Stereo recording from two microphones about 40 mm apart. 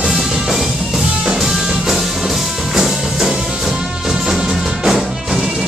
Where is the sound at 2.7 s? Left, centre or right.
Centre.